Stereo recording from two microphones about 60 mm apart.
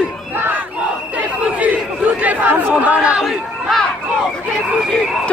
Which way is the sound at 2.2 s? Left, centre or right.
Right.